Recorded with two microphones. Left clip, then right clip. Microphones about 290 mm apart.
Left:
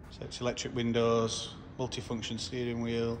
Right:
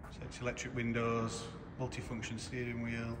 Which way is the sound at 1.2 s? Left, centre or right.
Centre.